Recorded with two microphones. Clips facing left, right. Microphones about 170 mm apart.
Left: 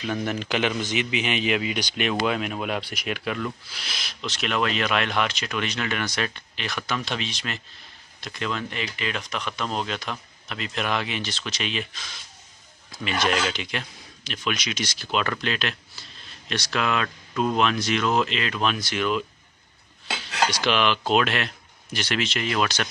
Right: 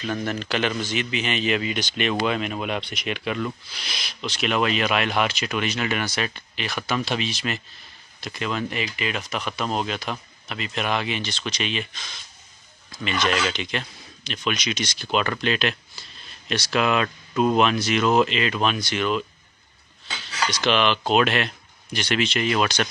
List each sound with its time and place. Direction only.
0.0 s a man's voice: 10° left (ahead or behind)
13.0 s speech: 5° left (ahead or behind)
20.6 s speech: 5° left (ahead or behind)